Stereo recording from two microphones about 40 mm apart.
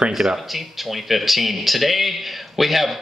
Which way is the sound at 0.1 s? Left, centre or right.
Centre.